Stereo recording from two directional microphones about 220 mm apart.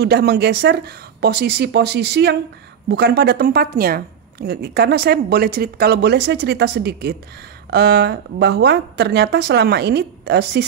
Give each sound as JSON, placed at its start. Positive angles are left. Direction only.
{"t": 0.0, "sound": "speech", "side_deg": -45}